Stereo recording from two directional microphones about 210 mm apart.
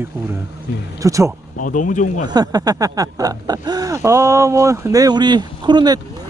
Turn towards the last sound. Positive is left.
turn(degrees=-20)  # may be behind; listen again after turning